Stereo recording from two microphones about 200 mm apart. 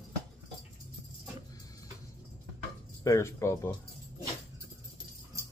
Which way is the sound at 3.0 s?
15° left (ahead or behind).